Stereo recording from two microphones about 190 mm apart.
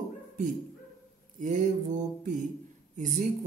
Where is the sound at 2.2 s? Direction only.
40° right (ahead or behind).